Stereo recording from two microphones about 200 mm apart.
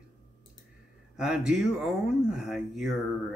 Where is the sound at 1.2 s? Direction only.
5° right (ahead or behind).